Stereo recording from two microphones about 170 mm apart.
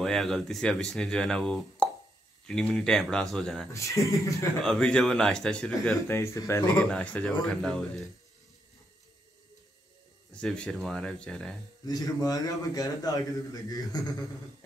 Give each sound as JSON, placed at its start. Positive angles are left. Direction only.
{"t": 0.0, "sound": "speech", "side_deg": 0}
{"t": 3.7, "sound": "speech", "side_deg": 20}
{"t": 4.6, "sound": "speech", "side_deg": 5}
{"t": 10.3, "sound": "speech", "side_deg": 5}
{"t": 11.8, "sound": "a man's voice", "side_deg": 20}